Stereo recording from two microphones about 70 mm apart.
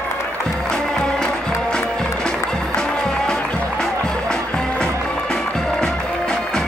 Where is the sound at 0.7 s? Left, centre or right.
Centre.